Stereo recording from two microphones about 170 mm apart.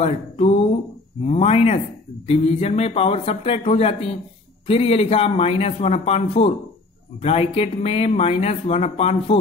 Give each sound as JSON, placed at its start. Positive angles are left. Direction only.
{"t": 0.0, "sound": "speech", "side_deg": 35}